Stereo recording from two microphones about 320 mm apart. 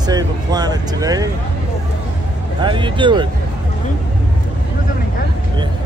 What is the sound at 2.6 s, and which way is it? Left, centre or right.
Speech, centre.